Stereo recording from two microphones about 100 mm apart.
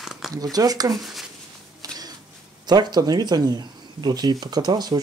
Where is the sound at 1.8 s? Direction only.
35° right (ahead or behind).